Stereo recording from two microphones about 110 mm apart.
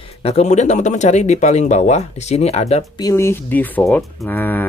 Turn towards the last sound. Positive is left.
turn(degrees=15)  # may be behind; listen again after turning